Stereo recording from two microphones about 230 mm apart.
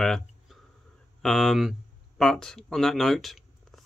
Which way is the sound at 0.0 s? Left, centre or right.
Centre.